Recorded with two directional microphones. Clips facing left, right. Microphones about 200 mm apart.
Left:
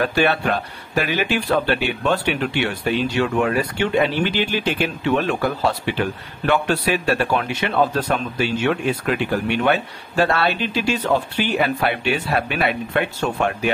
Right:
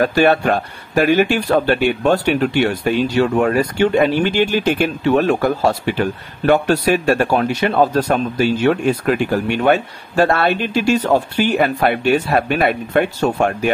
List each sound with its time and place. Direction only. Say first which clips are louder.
0.0 s speech: right 5 dB; 45° right (ahead or behind)